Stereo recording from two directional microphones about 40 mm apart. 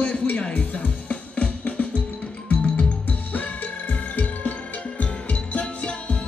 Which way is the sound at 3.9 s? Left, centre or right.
Left.